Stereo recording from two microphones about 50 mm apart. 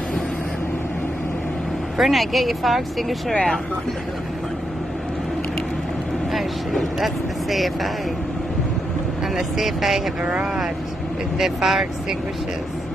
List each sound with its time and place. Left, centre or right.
2.0 s speech: centre
6.3 s speech: centre
9.6 s speech: centre
10.2 s speech: right
11.3 s speech: centre